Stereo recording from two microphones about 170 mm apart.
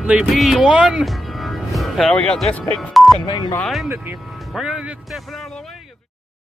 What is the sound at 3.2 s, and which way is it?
Speech, 25° left (ahead or behind).